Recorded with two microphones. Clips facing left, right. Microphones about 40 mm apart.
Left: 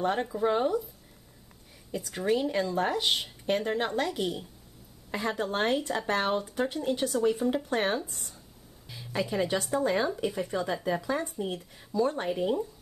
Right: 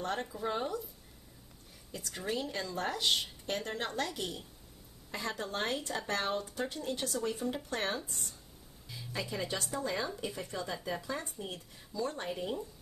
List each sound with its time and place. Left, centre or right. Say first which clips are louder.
0.0 s speech: left 8 dB; left
2.0 s speech: left 9 dB; centre
8.8 s a sound: left 6 dB; left
9.3 s speech: left 9 dB; left
11.4 s speech: left 9 dB; left
12.2 s speech: left 8 dB; left